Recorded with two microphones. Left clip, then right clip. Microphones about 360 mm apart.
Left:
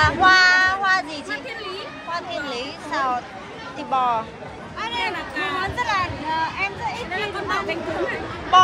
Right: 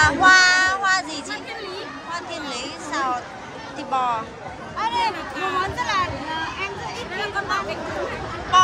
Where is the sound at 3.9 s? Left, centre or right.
Centre.